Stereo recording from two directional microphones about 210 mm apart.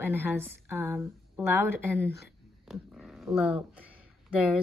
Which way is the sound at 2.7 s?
Centre (ahead or behind).